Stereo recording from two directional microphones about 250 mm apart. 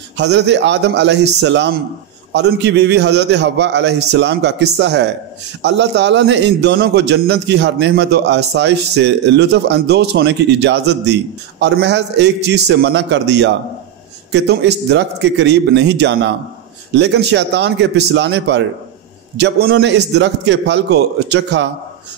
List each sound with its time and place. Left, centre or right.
0.2 s a man's voice: right